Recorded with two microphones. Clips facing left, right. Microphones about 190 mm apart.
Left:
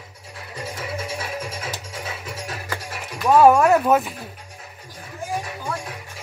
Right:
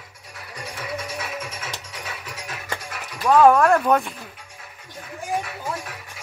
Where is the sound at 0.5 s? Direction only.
25° left (ahead or behind).